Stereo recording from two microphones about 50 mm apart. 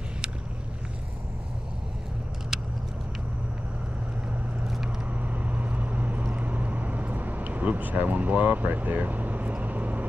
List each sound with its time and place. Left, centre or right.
4.8 s vehicle: right